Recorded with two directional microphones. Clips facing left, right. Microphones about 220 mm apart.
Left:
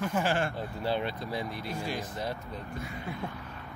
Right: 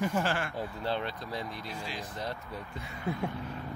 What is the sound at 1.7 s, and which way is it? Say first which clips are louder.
Speech: left 5 dB; 50° left (ahead or behind).